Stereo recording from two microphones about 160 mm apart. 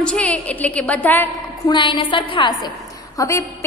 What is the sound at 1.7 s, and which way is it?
A woman's voice, 30° left (ahead or behind).